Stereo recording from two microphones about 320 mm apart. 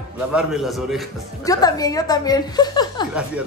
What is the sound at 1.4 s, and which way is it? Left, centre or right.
Speech, centre.